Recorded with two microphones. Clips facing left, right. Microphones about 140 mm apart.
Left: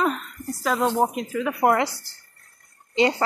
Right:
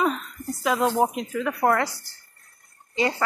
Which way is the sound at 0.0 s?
Centre (ahead or behind).